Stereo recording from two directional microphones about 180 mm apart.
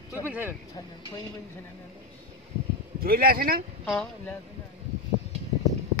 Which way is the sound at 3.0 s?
55° right (ahead or behind).